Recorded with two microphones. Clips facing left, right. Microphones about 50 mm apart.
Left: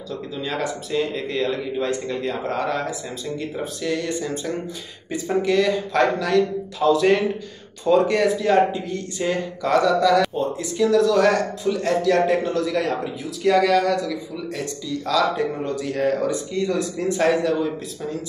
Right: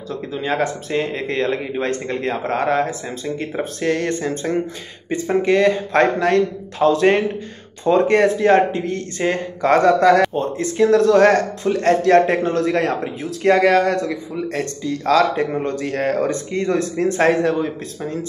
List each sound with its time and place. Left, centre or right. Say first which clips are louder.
0.1 s a man's voice: right 5 dB; right